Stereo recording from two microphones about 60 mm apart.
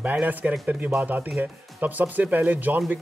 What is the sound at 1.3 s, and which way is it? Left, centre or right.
Speech, right.